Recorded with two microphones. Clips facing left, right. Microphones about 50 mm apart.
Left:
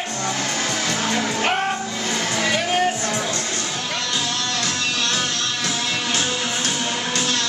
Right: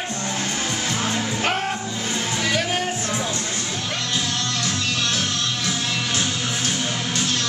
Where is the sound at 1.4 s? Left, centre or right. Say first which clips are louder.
Left 1 dB; centre.